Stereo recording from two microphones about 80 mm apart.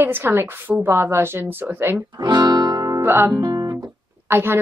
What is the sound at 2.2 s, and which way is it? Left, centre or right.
Music, right.